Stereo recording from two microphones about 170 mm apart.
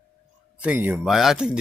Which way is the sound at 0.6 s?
10° right (ahead or behind).